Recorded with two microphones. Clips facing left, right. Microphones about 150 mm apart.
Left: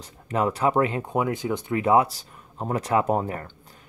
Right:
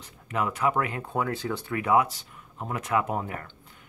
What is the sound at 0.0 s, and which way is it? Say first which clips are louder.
Speech: left 5 dB; 35° left (ahead or behind).